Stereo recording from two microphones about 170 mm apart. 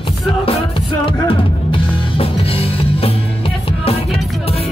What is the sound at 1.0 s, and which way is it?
Music, 30° left (ahead or behind).